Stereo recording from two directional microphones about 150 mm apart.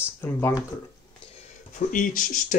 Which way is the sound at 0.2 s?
15° left (ahead or behind).